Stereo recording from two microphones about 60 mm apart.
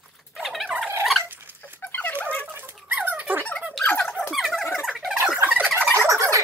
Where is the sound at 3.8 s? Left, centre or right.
Left.